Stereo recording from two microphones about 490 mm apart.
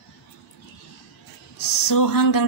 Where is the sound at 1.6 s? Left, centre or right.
Left.